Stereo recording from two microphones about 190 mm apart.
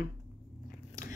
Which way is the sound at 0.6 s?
40° left (ahead or behind).